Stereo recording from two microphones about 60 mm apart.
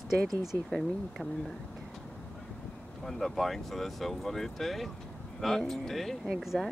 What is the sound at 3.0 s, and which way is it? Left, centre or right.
Speech, centre.